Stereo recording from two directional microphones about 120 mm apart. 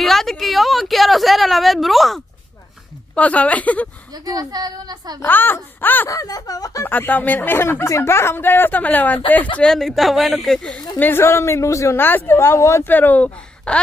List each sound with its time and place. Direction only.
0.0 s speech: 5° left (ahead or behind)
3.2 s speech: 10° left (ahead or behind)
4.1 s a woman's voice: 35° right (ahead or behind)
5.2 s speech: 15° left (ahead or behind)
6.0 s speech: 30° left (ahead or behind)
6.9 s speech: 15° left (ahead or behind)
9.6 s speech: 5° left (ahead or behind)
11.0 s speech: 20° left (ahead or behind)